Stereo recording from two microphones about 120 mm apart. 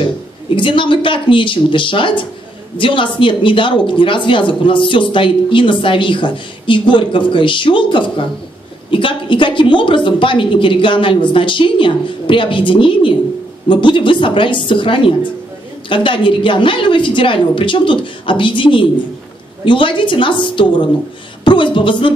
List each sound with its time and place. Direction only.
0.6 s speech: 45° left (ahead or behind)